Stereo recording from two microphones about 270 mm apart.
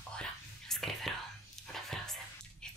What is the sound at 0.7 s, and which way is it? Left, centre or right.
Whispering, centre.